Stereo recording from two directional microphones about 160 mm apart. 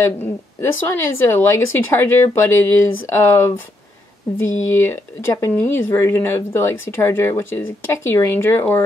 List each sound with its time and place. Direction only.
0.0 s speech: 15° left (ahead or behind)